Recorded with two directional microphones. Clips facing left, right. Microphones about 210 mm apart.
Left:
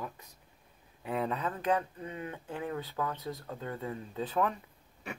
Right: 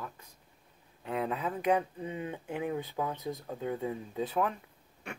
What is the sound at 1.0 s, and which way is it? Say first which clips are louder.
Speech: even; centre (ahead or behind).